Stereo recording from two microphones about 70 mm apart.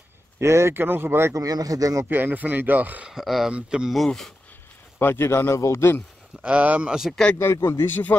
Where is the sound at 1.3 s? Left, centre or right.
Right.